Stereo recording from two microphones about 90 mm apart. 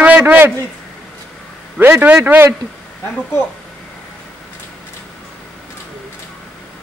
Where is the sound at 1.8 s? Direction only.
15° right (ahead or behind).